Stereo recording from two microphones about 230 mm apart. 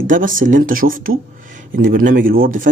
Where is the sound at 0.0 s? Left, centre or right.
Right.